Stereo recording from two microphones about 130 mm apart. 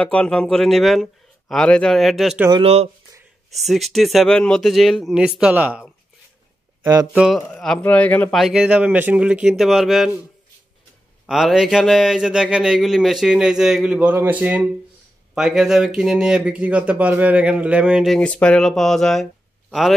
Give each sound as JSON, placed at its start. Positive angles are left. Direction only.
{"t": 0.0, "sound": "a man's voice", "side_deg": 10}
{"t": 2.6, "sound": "speech", "side_deg": -50}
{"t": 3.5, "sound": "a man's voice", "side_deg": 0}
{"t": 6.8, "sound": "speech", "side_deg": -30}
{"t": 7.1, "sound": "a man's voice", "side_deg": -5}
{"t": 7.3, "sound": "a man's voice", "side_deg": 5}
{"t": 8.4, "sound": "a man's voice", "side_deg": -5}
{"t": 11.2, "sound": "a man's voice", "side_deg": -5}
{"t": 18.2, "sound": "a man's voice", "side_deg": 10}